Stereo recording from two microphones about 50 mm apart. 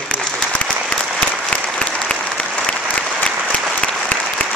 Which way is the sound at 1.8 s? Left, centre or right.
Left.